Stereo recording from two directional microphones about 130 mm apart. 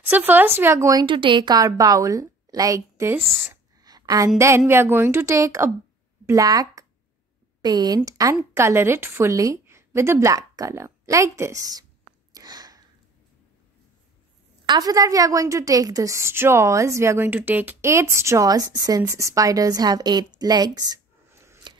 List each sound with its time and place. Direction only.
0.1 s speech: 15° right (ahead or behind)
1.0 s a woman's voice: 40° right (ahead or behind); by 3.2 s 25° right (ahead or behind)
3.2 s speech: 5° left (ahead or behind)
3.8 s a sound: 30° right (ahead or behind)
4.4 s a woman's voice: 20° right (ahead or behind)
12.4 s a sound: 30° right (ahead or behind)
14.7 s a woman's voice: 30° right (ahead or behind)
21.7 s scissors: 35° right (ahead or behind)